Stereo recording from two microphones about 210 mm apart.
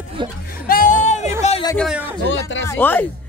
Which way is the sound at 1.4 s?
30° left (ahead or behind).